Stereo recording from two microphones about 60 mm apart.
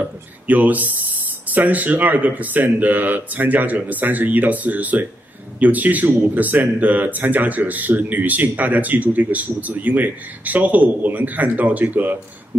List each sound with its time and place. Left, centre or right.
0.0 s speech: right